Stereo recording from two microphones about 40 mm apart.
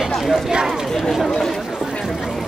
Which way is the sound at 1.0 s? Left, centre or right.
Centre.